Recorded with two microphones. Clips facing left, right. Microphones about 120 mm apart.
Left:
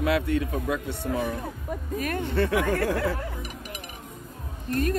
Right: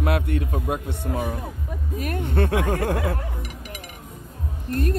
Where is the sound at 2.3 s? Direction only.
55° right (ahead or behind).